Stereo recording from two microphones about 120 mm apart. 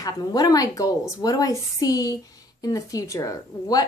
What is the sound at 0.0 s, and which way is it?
A woman's voice, 30° left (ahead or behind).